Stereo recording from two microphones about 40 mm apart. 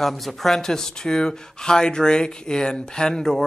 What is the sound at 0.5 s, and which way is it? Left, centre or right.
Speech, centre.